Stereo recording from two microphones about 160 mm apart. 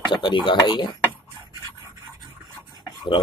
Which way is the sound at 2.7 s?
30° left (ahead or behind).